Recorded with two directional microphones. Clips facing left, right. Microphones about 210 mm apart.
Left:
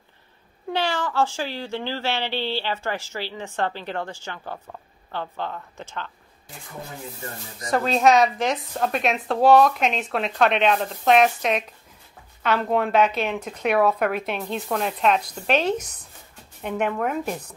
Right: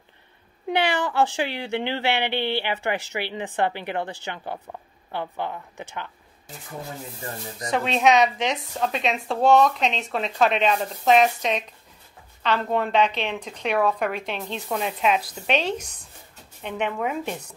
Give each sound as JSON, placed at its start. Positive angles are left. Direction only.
{"t": 0.7, "sound": "a woman's voice", "side_deg": -15}
{"t": 7.7, "sound": "a woman's voice", "side_deg": 0}